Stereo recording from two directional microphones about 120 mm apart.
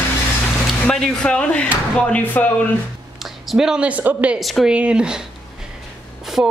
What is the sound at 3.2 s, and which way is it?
Speech, centre (ahead or behind).